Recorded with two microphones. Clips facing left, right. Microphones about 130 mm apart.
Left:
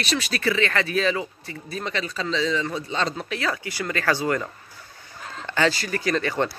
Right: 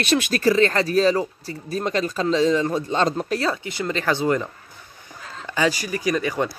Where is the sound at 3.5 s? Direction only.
25° right (ahead or behind).